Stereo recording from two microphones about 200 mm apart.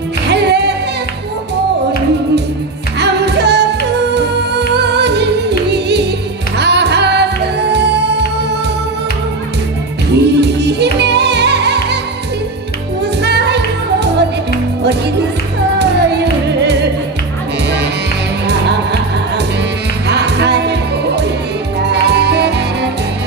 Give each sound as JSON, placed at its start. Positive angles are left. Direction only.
{"t": 0.3, "sound": "music", "side_deg": -55}
{"t": 3.0, "sound": "music", "side_deg": -55}
{"t": 10.1, "sound": "music", "side_deg": -55}
{"t": 13.2, "sound": "music", "side_deg": -55}
{"t": 16.6, "sound": "music", "side_deg": -55}
{"t": 18.5, "sound": "music", "side_deg": -60}